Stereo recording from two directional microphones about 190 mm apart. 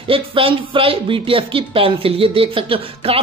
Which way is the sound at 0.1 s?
30° right (ahead or behind).